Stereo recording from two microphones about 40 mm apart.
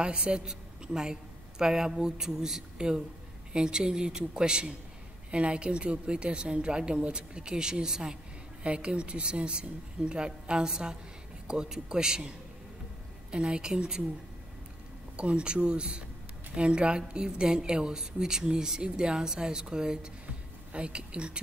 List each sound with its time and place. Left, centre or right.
0.0 s a woman's voice: right
15.1 s a woman's voice: right